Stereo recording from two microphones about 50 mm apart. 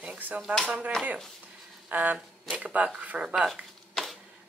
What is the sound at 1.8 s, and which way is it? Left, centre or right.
Speech, right.